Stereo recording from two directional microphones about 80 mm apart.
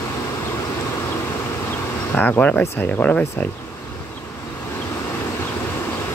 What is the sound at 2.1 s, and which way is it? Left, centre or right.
Speech, left.